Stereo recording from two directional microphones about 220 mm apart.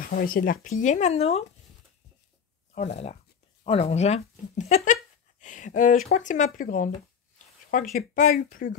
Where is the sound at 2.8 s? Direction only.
30° left (ahead or behind).